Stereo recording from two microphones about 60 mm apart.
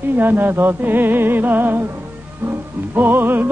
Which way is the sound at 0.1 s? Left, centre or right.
Right.